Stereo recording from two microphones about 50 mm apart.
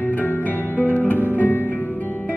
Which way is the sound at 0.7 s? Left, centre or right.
Left.